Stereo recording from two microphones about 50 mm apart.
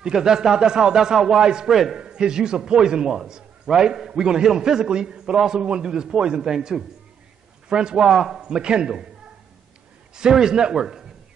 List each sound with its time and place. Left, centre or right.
0.0 s a man's voice: centre
1.7 s a man's voice: centre
2.0 s a man's voice: centre
10.1 s a man's voice: centre